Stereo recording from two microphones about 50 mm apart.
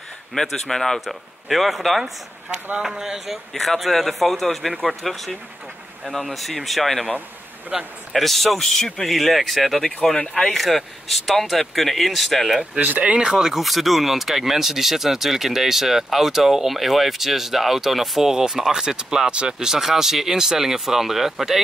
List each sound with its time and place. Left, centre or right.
0.3 s speech: centre
2.8 s speech: centre
3.5 s speech: centre
7.7 s speech: centre
8.1 s speech: centre
9.1 s speech: centre
10.1 s speech: centre
10.5 s speech: centre
12.7 s speech: right
13.2 s speech: centre